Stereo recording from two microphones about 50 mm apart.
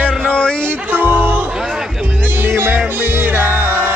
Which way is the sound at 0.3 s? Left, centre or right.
Left.